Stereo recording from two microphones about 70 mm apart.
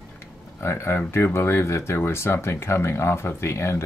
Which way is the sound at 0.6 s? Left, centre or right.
Left.